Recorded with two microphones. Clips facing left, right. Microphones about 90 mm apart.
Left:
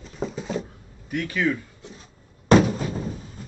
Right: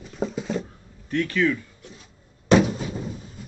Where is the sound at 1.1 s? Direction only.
15° left (ahead or behind).